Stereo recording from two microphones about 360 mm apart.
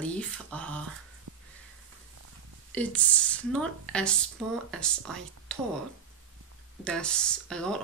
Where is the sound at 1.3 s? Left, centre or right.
Right.